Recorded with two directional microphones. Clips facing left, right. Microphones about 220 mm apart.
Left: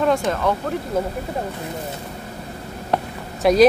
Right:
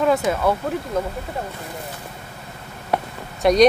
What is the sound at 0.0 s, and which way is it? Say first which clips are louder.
Speech: right 1 dB; 5° right (ahead or behind).